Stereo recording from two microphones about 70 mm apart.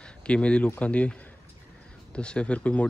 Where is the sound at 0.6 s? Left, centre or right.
Left.